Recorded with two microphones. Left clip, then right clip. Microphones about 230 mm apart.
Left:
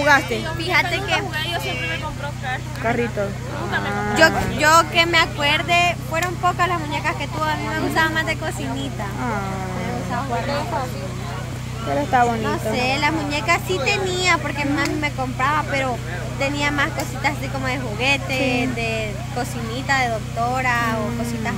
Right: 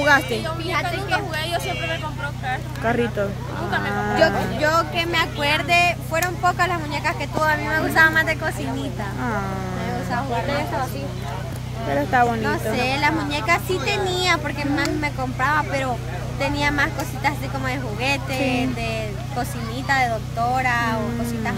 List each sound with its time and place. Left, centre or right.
0.0 s speech: centre
1.3 s a sound: centre
1.7 s speech: centre
2.4 s speech: centre
4.6 s speech: left
5.4 s speech: centre
11.9 s speech: centre